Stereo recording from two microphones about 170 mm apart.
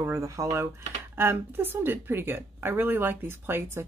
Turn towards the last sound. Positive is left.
turn(degrees=-15)  # may be behind; listen again after turning